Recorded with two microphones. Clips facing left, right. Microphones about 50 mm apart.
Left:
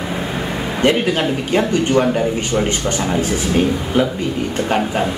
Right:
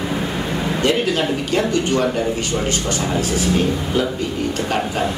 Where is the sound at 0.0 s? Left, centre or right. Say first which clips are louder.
Even; centre.